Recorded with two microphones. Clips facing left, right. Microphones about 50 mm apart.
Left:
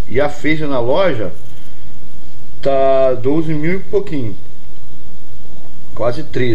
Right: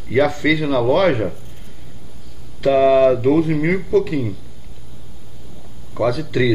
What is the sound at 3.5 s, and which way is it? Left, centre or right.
Speech, centre.